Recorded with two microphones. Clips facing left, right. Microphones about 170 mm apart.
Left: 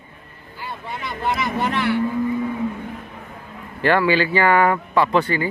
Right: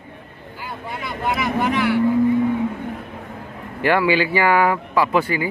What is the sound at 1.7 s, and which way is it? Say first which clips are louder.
Speech: right 2 dB; 10° right (ahead or behind).